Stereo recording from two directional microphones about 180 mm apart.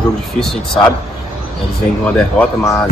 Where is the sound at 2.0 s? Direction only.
10° left (ahead or behind).